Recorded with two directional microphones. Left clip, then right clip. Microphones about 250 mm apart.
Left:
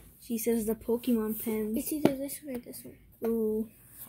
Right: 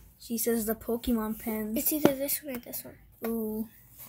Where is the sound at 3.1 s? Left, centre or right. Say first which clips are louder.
Left 3 dB; centre.